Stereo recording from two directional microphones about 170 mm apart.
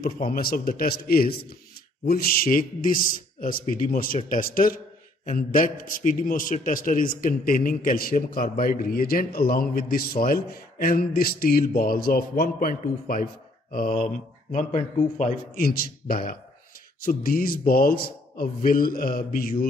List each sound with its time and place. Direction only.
0.0 s a man's voice: 60° left (ahead or behind)
14.5 s a man's voice: 45° left (ahead or behind)
15.5 s a man's voice: 60° left (ahead or behind)